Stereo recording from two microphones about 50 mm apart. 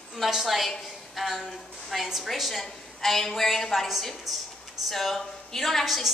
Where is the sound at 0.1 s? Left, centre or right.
Centre.